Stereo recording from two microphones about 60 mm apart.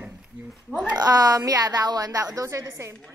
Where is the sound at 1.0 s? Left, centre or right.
Right.